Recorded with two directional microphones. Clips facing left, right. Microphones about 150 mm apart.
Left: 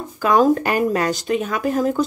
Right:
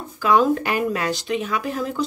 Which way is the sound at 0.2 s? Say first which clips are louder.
Left 2 dB; 45° left (ahead or behind).